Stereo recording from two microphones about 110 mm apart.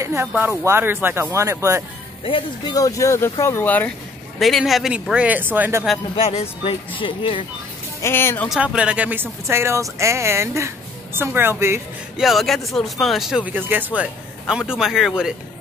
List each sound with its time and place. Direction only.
0.0 s a sound: 20° right (ahead or behind)
0.5 s speech: 20° right (ahead or behind)
2.2 s speech: 50° left (ahead or behind)
2.7 s speech: 30° left (ahead or behind)
4.4 s speech: centre (ahead or behind); by 5.9 s 20° right (ahead or behind)
6.1 s speech: 65° left (ahead or behind)
8.0 s speech: 20° left (ahead or behind)
8.5 s speech: 10° right (ahead or behind)
12.2 s speech: centre (ahead or behind); by 14.0 s 15° right (ahead or behind)
14.4 s speech: 5° right (ahead or behind)